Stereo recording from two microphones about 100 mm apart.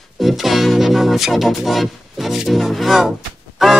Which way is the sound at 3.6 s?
5° right (ahead or behind).